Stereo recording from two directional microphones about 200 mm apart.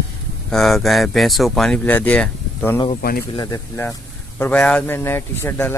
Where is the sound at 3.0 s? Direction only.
50° left (ahead or behind).